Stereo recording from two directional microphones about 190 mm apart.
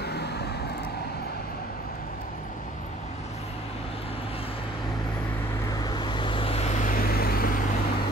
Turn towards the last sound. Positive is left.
turn(degrees=50)  # may be behind; listen again after turning